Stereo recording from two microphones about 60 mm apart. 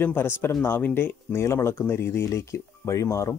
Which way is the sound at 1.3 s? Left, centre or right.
Left.